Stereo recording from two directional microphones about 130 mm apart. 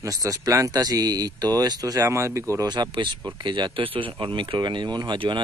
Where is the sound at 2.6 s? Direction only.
35° right (ahead or behind).